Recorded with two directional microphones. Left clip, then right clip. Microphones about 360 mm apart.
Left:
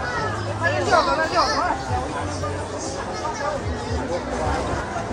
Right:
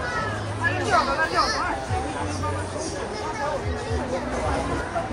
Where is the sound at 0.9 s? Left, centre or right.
Left.